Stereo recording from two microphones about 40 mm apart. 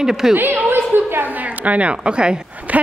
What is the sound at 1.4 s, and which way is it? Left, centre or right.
Speech, right.